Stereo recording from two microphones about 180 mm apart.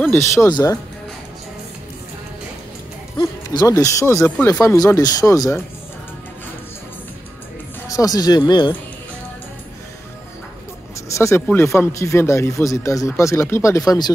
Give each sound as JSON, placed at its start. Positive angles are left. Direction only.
{"t": 0.1, "sound": "speech", "side_deg": 15}
{"t": 3.2, "sound": "speech", "side_deg": 20}
{"t": 7.9, "sound": "speech", "side_deg": 20}
{"t": 11.1, "sound": "speech", "side_deg": 15}